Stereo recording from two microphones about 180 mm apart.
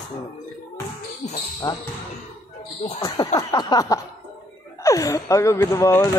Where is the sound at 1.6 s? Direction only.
25° left (ahead or behind).